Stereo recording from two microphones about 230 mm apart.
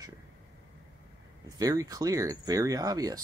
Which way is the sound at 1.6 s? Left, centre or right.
Centre.